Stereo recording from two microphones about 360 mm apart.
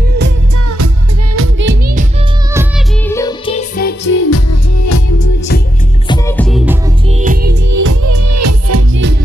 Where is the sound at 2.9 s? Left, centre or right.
Centre; by 5.0 s left.